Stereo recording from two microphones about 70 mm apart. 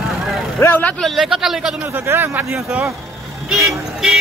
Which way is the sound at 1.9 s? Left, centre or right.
Right.